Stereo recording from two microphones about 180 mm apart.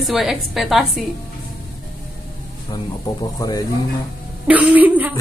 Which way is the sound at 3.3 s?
20° left (ahead or behind).